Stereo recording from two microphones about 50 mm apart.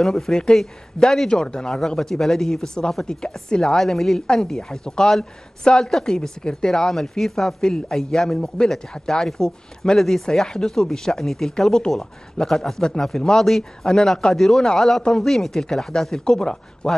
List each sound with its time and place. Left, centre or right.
0.0 s speech: centre
3.8 s a woman's voice: centre